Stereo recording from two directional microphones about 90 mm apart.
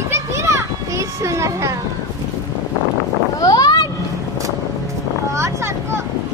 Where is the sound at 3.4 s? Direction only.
45° left (ahead or behind).